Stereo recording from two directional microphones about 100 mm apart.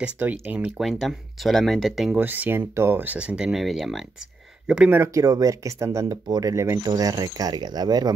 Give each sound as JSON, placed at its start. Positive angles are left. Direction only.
{"t": 0.0, "sound": "speech", "side_deg": -15}
{"t": 2.1, "sound": "speech", "side_deg": -20}
{"t": 4.9, "sound": "speech", "side_deg": -30}